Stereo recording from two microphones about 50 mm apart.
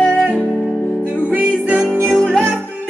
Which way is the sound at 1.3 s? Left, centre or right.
Right.